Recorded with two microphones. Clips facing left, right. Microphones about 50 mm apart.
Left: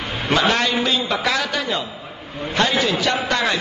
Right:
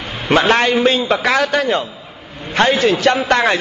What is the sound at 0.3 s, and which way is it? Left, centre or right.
A man's voice, right.